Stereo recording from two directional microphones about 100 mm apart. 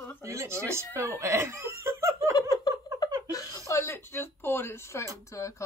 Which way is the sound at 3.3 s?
35° left (ahead or behind).